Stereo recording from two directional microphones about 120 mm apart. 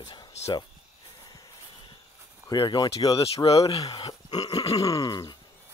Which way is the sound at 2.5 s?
40° left (ahead or behind).